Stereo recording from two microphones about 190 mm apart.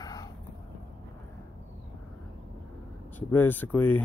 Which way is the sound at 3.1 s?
10° left (ahead or behind).